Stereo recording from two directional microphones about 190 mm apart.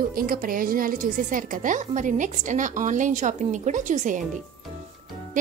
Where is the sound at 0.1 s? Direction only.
50° right (ahead or behind).